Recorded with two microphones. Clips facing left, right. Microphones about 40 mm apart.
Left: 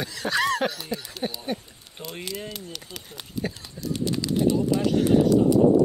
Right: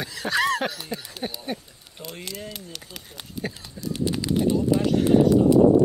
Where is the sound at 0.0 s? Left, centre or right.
Centre.